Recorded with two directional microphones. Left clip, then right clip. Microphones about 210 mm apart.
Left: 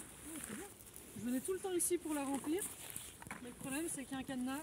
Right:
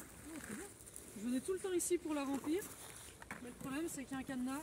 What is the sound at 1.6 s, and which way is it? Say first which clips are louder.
Speech: right 1 dB; 10° left (ahead or behind).